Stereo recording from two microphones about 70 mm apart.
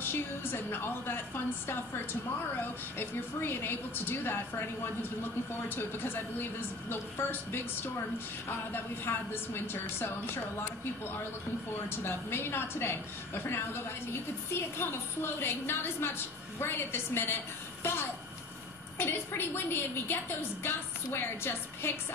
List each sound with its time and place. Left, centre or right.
0.0 s a woman's voice: left
5.8 s a woman's voice: left
11.9 s a woman's voice: left
18.9 s a woman's voice: left